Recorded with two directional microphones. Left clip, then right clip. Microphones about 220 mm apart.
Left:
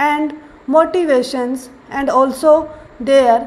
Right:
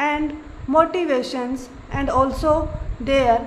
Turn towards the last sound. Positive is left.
turn(degrees=20)  # may be behind; listen again after turning